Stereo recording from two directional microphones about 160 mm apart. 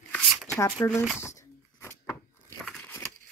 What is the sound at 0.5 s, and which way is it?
Speech, 15° left (ahead or behind).